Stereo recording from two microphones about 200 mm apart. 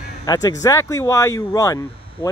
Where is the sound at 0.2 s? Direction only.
20° left (ahead or behind).